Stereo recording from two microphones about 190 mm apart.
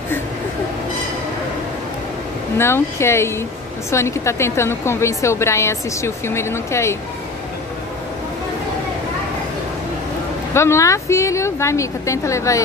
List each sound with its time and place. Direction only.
2.5 s a woman's voice: 15° left (ahead or behind)
10.5 s a woman's voice: 15° left (ahead or behind)